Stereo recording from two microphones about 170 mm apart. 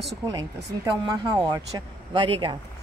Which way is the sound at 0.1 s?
20° right (ahead or behind).